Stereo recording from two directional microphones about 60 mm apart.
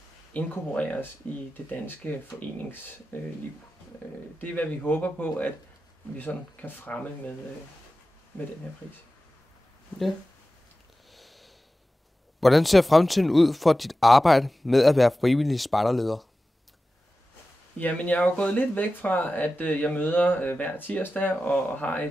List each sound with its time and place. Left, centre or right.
0.3 s speech: left
4.4 s speech: left
11.1 s sniff: centre
12.4 s speech: centre
17.7 s speech: left